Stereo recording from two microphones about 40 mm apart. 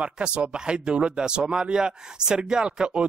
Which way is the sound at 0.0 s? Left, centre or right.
Right.